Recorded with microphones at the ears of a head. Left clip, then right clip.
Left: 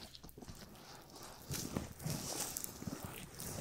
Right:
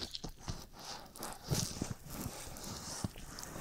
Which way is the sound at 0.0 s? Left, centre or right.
Right.